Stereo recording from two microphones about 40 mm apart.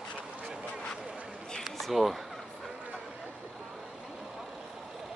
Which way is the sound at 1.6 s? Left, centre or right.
Centre.